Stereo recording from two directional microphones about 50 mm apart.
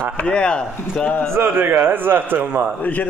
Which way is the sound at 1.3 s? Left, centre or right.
Right.